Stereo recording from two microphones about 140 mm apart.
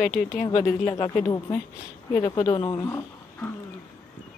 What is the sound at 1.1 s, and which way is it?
Speech, 20° left (ahead or behind).